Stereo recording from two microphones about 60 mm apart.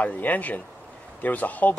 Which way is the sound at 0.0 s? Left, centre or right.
Left.